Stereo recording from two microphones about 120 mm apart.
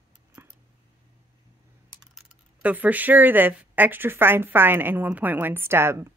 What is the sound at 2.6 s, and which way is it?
Speech, 15° right (ahead or behind).